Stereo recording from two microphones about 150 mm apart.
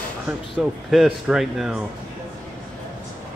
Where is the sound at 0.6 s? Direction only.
Centre (ahead or behind).